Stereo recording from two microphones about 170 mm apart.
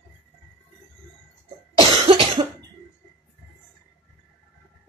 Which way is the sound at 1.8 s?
25° right (ahead or behind).